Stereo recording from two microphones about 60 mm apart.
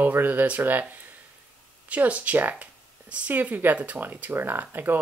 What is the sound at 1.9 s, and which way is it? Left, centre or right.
Speech, right.